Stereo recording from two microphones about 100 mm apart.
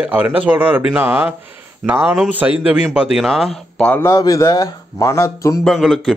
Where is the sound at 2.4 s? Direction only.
15° right (ahead or behind).